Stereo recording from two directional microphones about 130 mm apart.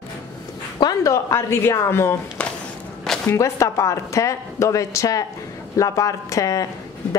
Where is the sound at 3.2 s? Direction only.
20° left (ahead or behind).